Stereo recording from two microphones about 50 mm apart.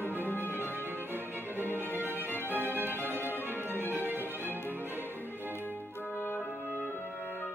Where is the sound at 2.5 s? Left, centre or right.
Right.